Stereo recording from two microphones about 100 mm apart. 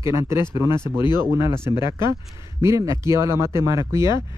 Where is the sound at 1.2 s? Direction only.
25° right (ahead or behind).